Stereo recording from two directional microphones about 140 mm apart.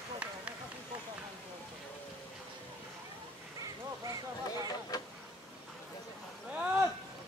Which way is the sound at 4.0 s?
25° right (ahead or behind).